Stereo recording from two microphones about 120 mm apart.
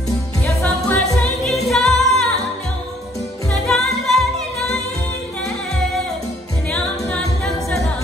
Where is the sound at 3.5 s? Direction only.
5° left (ahead or behind).